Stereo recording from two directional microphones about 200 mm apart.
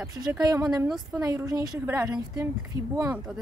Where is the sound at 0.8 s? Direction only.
Centre (ahead or behind).